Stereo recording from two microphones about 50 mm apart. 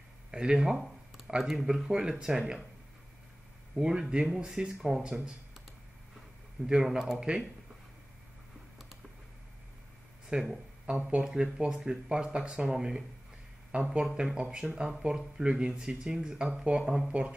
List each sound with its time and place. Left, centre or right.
0.3 s speech: centre
3.7 s speech: centre
6.6 s speech: centre
10.3 s speech: right
11.5 s speech: centre